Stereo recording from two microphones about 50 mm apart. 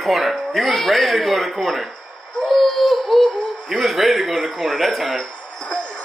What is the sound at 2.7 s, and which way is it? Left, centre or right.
Music, centre.